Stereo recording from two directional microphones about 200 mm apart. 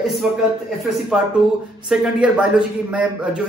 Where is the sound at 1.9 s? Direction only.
5° right (ahead or behind).